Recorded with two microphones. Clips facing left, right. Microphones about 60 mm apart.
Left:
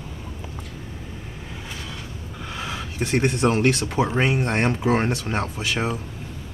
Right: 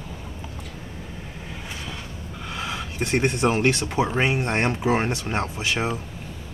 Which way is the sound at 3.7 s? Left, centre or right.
Centre.